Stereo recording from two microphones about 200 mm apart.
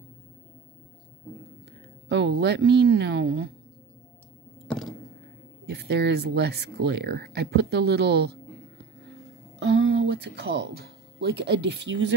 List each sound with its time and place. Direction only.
2.0 s speech: 60° right (ahead or behind)
5.7 s speech: 55° right (ahead or behind)
9.6 s speech: 60° right (ahead or behind)